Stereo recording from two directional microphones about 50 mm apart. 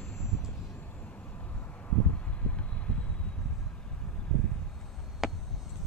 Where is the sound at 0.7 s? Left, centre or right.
Left.